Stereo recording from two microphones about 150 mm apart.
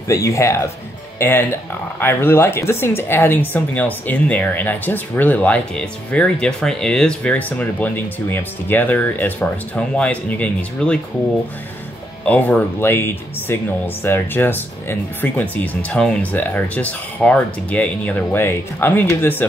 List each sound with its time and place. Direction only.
0.1 s speech: 20° left (ahead or behind)
12.3 s speech: 10° left (ahead or behind)